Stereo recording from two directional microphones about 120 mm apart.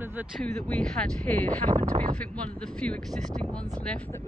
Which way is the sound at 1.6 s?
40° right (ahead or behind).